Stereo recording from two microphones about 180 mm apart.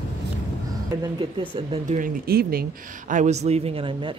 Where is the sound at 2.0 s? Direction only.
55° right (ahead or behind).